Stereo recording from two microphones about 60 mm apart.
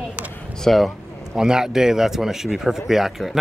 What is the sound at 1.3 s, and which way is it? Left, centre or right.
Speech, centre.